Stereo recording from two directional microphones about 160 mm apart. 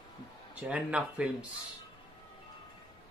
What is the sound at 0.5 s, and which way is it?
Speech, 10° right (ahead or behind).